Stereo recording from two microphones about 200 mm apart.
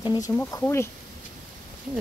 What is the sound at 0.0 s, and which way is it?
Speech, 20° left (ahead or behind).